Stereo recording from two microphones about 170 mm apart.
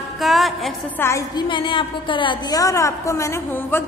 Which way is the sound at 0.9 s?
15° left (ahead or behind).